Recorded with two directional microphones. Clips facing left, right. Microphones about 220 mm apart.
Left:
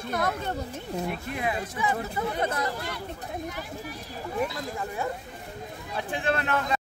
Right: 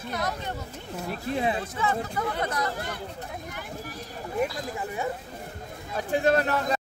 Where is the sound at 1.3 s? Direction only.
30° right (ahead or behind).